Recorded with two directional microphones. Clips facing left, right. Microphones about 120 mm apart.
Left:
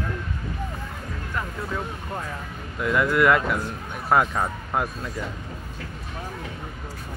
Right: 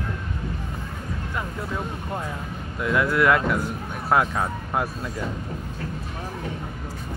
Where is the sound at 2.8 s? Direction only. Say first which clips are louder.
Left 1 dB; centre (ahead or behind).